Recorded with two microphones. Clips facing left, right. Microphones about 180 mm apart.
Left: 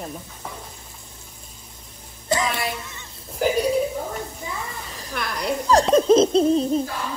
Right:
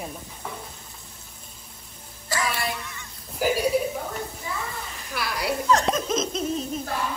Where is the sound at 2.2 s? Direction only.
20° left (ahead or behind).